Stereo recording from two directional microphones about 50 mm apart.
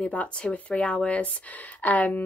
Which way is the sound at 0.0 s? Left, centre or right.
Left.